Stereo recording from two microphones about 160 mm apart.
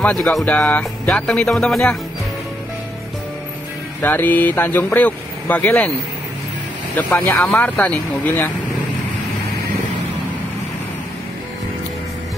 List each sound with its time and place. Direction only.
0.0 s speech: 5° left (ahead or behind)
4.0 s speech: 10° left (ahead or behind)
7.0 s speech: 15° left (ahead or behind)